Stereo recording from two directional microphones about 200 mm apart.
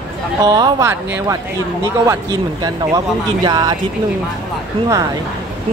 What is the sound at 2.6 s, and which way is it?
Speech, 20° right (ahead or behind).